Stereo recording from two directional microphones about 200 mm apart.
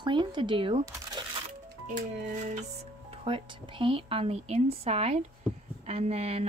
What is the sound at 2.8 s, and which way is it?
Speech, 25° right (ahead or behind).